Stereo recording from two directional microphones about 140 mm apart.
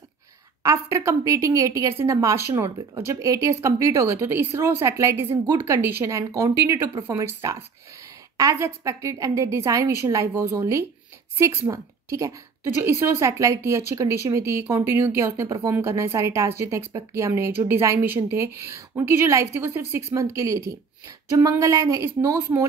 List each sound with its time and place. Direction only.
0.6 s a woman's voice: 20° right (ahead or behind)